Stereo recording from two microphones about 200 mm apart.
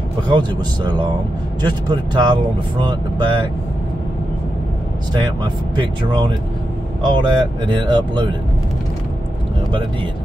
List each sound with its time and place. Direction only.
0.3 s speech: 20° right (ahead or behind)
5.1 s speech: 25° right (ahead or behind)